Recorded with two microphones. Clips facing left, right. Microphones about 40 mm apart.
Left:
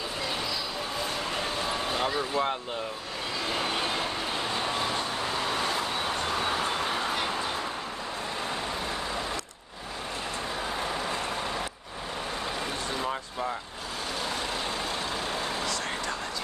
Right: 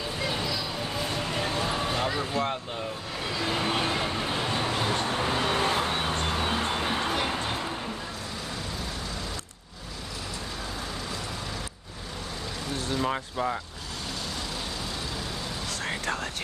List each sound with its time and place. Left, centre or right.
1.4 s a sound: centre
2.0 s speech: centre
3.4 s vehicle: centre
4.7 s vehicle: right
6.3 s vehicle: right
10.8 s vehicle: left
13.0 s vehicle: centre